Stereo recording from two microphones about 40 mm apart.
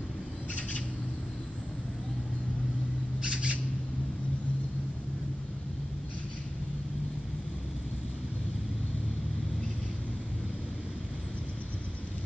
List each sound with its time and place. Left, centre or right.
3.2 s squawk: right